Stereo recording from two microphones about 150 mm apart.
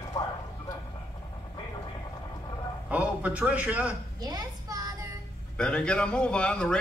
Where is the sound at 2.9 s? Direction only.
10° right (ahead or behind).